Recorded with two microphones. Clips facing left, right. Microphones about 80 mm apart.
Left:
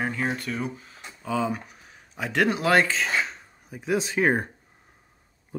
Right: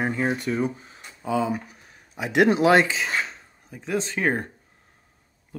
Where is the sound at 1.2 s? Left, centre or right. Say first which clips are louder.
Right 2 dB; centre.